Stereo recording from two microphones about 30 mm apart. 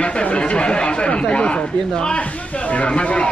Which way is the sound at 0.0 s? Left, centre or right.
Left.